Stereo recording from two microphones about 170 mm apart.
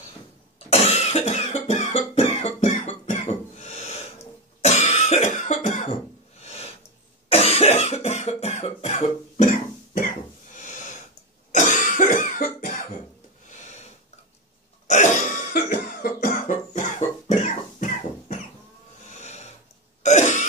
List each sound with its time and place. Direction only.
0.7 s cough: 40° left (ahead or behind)
6.4 s a sound: 40° left (ahead or behind)
7.2 s cough: 35° left (ahead or behind)
10.5 s a sound: 45° left (ahead or behind)
11.5 s cough: 45° left (ahead or behind)
14.9 s throat clearing: 45° left (ahead or behind)
16.4 s cough: 45° left (ahead or behind)
19.0 s snoring: 40° left (ahead or behind)
20.0 s throat clearing: 45° left (ahead or behind)